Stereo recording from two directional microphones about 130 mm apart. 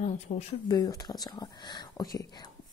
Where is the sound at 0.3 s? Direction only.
60° left (ahead or behind).